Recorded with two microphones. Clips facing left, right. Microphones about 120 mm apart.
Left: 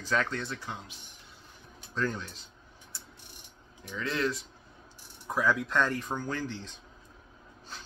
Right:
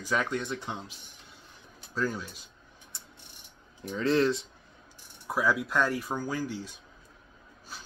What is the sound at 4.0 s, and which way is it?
Speech, 35° right (ahead or behind).